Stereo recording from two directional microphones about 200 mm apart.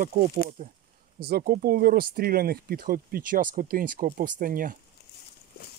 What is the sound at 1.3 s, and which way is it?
Speech, 50° right (ahead or behind).